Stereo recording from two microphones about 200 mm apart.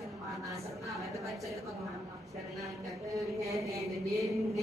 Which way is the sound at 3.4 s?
15° right (ahead or behind).